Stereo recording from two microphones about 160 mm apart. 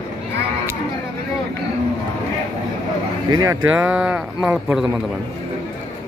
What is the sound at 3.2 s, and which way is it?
Speech, 25° right (ahead or behind).